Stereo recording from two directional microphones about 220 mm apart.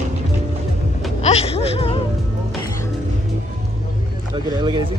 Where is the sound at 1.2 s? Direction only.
30° left (ahead or behind).